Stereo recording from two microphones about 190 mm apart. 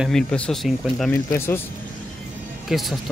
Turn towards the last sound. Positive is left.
turn(degrees=0)  # may be behind; listen again after turning